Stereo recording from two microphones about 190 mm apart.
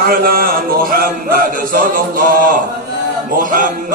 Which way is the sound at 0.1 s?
50° right (ahead or behind).